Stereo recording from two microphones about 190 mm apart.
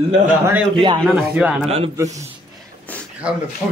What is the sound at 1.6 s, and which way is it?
Speech, 30° right (ahead or behind).